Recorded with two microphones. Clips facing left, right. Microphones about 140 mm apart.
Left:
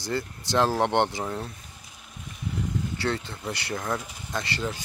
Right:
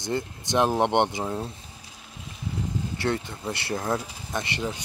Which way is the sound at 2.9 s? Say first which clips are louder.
Right 3 dB; 25° right (ahead or behind).